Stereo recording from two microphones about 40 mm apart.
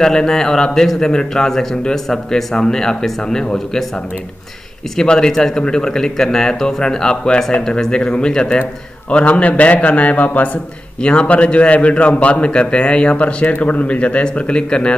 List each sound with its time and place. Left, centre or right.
0.0 s speech: centre
5.0 s speech: left
9.1 s a man's voice: left
11.0 s a man's voice: left